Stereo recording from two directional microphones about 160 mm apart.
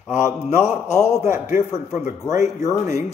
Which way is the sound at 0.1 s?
45° left (ahead or behind).